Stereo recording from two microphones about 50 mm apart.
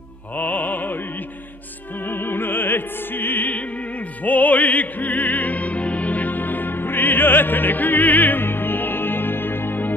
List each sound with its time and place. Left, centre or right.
0.4 s music: left
2.0 s music: left